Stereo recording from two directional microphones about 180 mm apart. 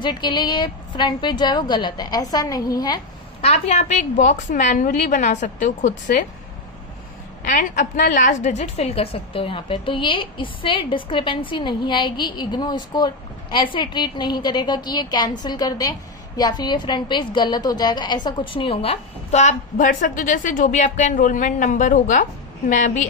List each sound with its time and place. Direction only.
0.0 s a woman's voice: 25° left (ahead or behind)
3.4 s a woman's voice: 35° left (ahead or behind)
7.4 s a woman's voice: 45° left (ahead or behind)